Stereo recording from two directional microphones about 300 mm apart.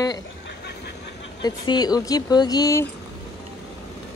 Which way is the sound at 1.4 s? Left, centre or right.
Centre.